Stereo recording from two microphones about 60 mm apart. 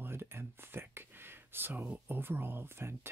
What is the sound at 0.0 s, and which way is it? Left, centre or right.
Speech, right.